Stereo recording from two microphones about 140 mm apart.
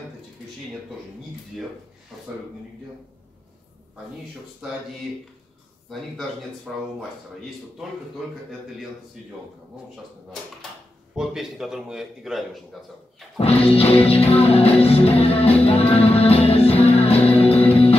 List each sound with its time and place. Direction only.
1.5 s a man's voice: centre (ahead or behind)
5.9 s a man's voice: centre (ahead or behind)
11.1 s a man's voice: 5° right (ahead or behind)
13.4 s music: 45° left (ahead or behind)